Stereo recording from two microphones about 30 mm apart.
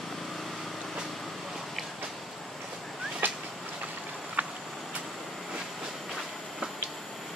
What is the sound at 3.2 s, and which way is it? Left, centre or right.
Vehicle, right.